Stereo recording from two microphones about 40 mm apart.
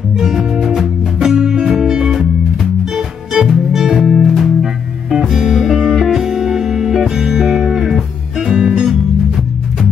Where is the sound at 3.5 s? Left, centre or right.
Centre.